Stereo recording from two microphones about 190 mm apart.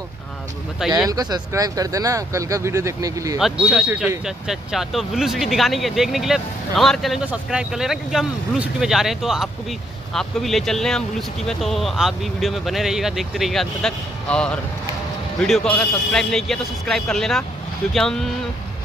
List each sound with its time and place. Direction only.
0.9 s speech: 20° right (ahead or behind)
3.3 s speech: centre (ahead or behind)